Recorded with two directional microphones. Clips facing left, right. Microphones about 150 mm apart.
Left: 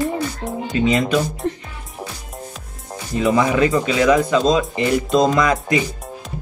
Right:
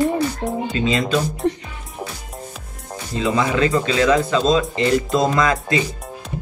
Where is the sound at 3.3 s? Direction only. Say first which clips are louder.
Left 1 dB; 15° left (ahead or behind).